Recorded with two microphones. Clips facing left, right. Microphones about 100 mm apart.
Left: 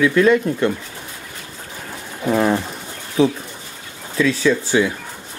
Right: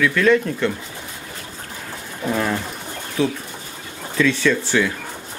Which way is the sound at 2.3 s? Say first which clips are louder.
Left 5 dB; 25° left (ahead or behind).